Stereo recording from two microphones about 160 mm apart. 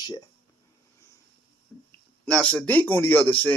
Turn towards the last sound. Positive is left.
turn(degrees=10)  # may be behind; listen again after turning